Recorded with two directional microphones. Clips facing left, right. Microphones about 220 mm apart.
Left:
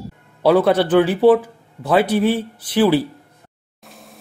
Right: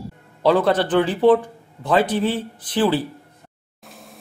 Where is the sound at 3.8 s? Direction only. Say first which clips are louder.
Even; centre (ahead or behind).